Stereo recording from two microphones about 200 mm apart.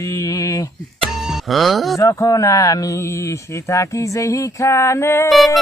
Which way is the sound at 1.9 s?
15° left (ahead or behind).